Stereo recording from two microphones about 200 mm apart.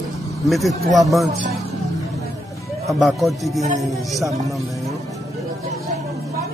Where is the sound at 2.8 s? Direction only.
Centre (ahead or behind).